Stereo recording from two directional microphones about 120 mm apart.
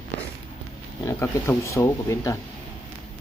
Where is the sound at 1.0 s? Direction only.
20° left (ahead or behind).